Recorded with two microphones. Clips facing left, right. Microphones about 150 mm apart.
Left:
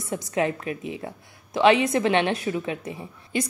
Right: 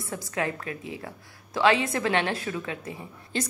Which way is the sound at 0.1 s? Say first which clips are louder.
Left 5 dB; 20° left (ahead or behind).